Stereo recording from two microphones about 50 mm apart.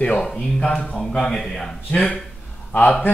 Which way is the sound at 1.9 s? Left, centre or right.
Left.